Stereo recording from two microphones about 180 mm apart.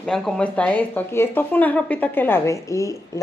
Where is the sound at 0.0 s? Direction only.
Centre (ahead or behind).